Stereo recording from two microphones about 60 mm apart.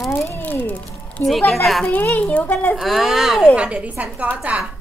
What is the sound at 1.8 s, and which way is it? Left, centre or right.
Speech, left.